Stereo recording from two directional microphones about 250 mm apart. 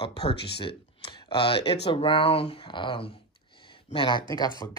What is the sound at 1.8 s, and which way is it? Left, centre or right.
Speech, left.